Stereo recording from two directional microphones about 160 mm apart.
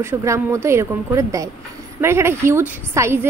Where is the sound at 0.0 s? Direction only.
15° right (ahead or behind).